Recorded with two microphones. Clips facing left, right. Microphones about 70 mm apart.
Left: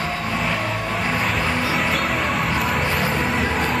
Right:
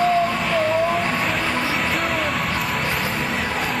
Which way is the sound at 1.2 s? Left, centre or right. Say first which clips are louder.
Even; centre.